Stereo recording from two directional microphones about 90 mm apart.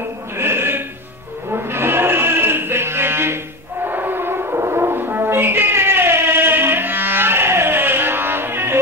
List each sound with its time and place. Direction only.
0.4 s sheep: 25° right (ahead or behind)
1.5 s a sound: 25° right (ahead or behind)
3.8 s french horn: 25° right (ahead or behind)